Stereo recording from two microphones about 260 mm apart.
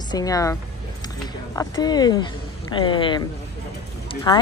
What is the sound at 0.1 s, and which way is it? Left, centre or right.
Speech, centre.